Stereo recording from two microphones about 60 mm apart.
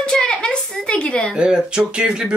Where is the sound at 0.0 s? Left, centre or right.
Centre.